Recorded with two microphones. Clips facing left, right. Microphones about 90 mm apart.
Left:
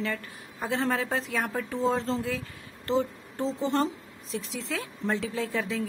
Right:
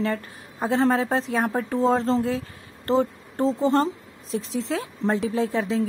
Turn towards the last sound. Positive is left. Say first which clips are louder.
# right 6 dB
turn(degrees=-25)  # may be behind; listen again after turning